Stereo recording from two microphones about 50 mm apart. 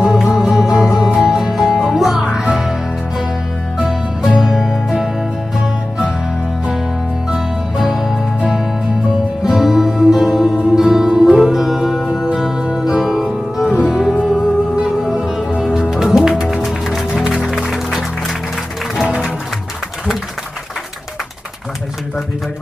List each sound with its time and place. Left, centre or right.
0.0 s music: centre
3.7 s music: centre
4.4 s music: centre
7.2 s music: centre
9.4 s music: centre
15.1 s music: centre
17.1 s music: centre
19.0 s music: centre